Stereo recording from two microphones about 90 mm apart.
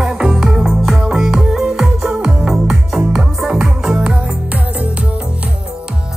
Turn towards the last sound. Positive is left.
turn(degrees=-15)  # may be behind; listen again after turning